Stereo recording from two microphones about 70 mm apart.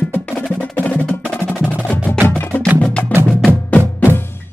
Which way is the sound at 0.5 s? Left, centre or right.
Centre.